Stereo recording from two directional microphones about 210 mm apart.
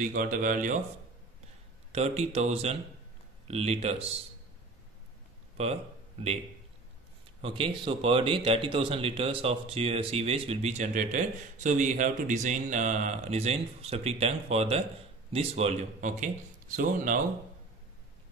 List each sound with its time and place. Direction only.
0.0 s speech: 40° right (ahead or behind)
1.9 s speech: 30° right (ahead or behind)
5.6 s speech: 30° right (ahead or behind)
7.4 s a man's voice: 25° right (ahead or behind); by 17.2 s 40° right (ahead or behind)